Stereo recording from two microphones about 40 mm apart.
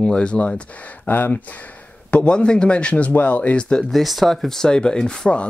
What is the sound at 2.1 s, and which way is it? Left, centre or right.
Speech, left.